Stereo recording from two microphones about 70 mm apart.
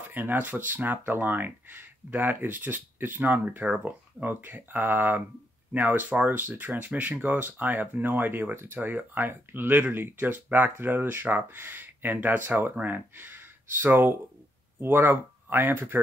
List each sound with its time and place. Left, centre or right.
0.1 s speech: right